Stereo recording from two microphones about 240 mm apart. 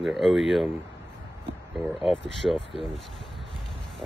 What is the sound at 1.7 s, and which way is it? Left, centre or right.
Speech, centre.